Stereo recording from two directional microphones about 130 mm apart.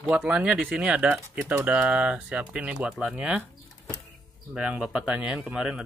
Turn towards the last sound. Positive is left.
turn(degrees=-5)  # may be behind; listen again after turning